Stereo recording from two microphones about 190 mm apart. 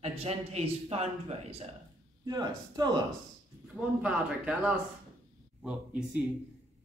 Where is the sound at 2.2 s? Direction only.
20° right (ahead or behind).